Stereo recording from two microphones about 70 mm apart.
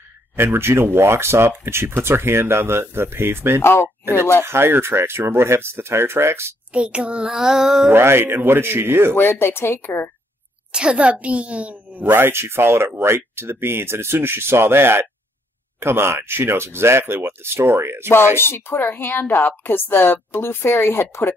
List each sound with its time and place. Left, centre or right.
0.4 s a woman's voice: right
3.6 s a woman's voice: left
4.0 s a woman's voice: right
6.7 s a child's voice: centre
7.9 s a woman's voice: right
9.1 s a woman's voice: left
10.7 s a woman's voice: centre; by 18.1 s right
18.1 s a woman's voice: left